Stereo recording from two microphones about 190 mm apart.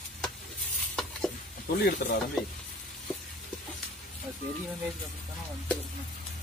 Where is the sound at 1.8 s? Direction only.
50° left (ahead or behind).